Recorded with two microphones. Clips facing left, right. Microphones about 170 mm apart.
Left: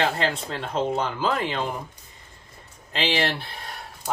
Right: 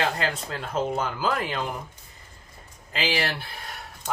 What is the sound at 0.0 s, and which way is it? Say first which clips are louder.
Speech: left 2 dB; 25° left (ahead or behind).